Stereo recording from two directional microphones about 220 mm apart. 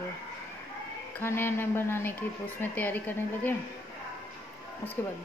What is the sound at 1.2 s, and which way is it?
A woman's voice, 10° left (ahead or behind).